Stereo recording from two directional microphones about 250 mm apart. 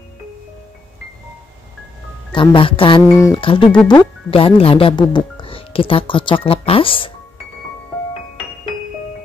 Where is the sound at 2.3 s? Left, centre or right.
Centre.